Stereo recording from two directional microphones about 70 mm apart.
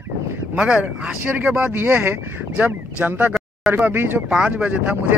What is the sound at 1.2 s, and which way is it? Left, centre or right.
Speech, right.